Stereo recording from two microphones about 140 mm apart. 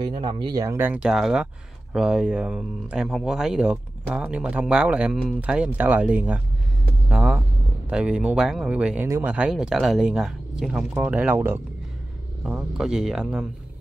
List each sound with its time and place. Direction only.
0.0 s speech: 35° right (ahead or behind)
0.7 s speech: 15° right (ahead or behind)
9.0 s speech: 20° right (ahead or behind)
9.3 s speech: 5° right (ahead or behind)
12.4 s speech: 5° right (ahead or behind)